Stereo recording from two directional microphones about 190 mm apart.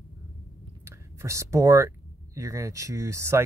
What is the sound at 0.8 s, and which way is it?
Speech, 15° right (ahead or behind).